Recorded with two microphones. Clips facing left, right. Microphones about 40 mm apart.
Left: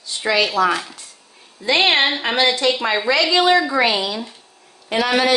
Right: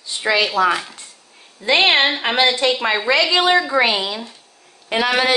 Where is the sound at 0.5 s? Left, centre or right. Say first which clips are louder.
Right 1 dB; right.